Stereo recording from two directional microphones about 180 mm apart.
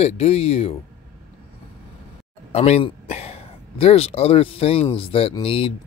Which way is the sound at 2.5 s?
35° left (ahead or behind).